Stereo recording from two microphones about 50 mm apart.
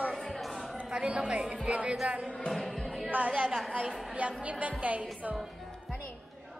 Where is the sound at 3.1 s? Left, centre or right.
Right.